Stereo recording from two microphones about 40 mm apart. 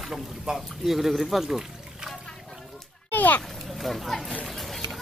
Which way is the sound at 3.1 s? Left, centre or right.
Left.